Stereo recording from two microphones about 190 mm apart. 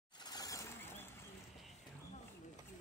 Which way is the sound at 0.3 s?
20° left (ahead or behind).